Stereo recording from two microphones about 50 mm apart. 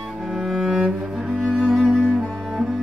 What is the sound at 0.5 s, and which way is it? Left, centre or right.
Cello, centre.